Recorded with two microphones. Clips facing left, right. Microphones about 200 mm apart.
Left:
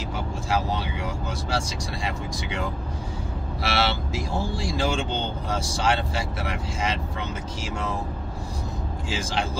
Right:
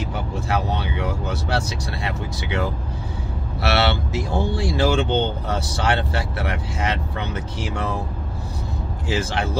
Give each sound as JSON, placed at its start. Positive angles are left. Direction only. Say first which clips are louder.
{"t": 0.5, "sound": "vehicle", "louder": "right 1 dB", "side_deg": -65}
{"t": 3.6, "sound": "speech", "louder": "right 5 dB", "side_deg": -65}
{"t": 9.1, "sound": "speech", "louder": "right 6 dB", "side_deg": -65}